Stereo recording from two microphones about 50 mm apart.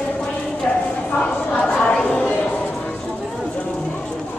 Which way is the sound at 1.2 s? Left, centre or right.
Centre.